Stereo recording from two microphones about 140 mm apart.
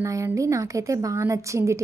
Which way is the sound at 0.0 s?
20° right (ahead or behind).